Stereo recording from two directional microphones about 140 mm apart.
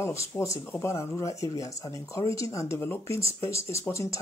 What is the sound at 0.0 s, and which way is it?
Speech, 20° left (ahead or behind).